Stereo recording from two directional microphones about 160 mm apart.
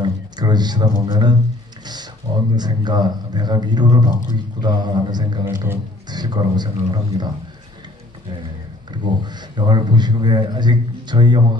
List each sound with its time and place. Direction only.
0.0 s speech: 25° right (ahead or behind)
2.5 s a man's voice: 25° right (ahead or behind)
8.9 s a man's voice: 25° right (ahead or behind)